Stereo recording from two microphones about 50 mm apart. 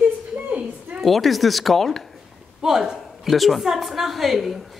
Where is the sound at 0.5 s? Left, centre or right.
Right.